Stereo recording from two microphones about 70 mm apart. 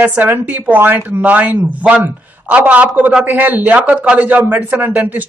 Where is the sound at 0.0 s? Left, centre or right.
Right.